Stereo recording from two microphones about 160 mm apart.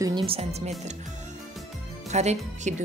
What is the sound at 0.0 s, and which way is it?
Music, 30° right (ahead or behind).